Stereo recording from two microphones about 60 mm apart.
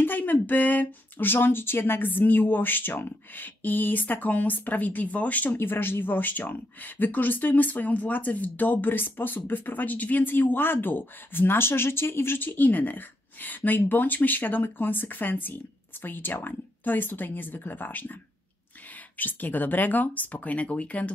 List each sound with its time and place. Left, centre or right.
0.0 s speech: left
19.1 s speech: left